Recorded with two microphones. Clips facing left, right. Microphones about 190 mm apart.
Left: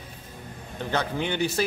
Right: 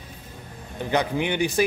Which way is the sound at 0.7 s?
15° right (ahead or behind).